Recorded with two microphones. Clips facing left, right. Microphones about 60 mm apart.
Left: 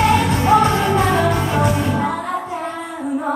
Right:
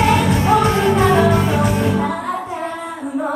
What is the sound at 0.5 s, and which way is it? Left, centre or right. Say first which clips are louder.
Music: left 1 dB; centre.